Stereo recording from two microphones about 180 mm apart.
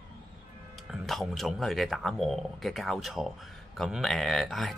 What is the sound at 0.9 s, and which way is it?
A man's voice, centre (ahead or behind).